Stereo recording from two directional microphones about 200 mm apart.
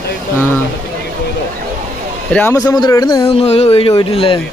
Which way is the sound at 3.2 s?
30° left (ahead or behind).